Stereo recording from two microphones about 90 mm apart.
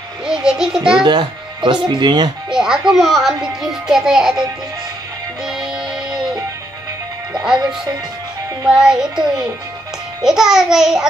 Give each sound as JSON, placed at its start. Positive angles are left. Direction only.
{"t": 0.3, "sound": "a child's voice", "side_deg": -10}
{"t": 1.0, "sound": "speech", "side_deg": -55}
{"t": 2.5, "sound": "a child's voice", "side_deg": -5}
{"t": 7.3, "sound": "speech", "side_deg": -10}
{"t": 8.6, "sound": "a child's voice", "side_deg": -5}
{"t": 10.2, "sound": "a child's voice", "side_deg": -5}